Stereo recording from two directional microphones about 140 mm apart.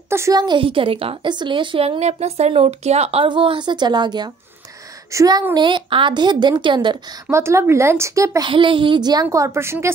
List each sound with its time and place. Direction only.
0.1 s a woman's voice: 25° right (ahead or behind)
7.2 s a woman's voice: 20° right (ahead or behind)
8.5 s a woman's voice: 35° right (ahead or behind); by 9.9 s 20° right (ahead or behind)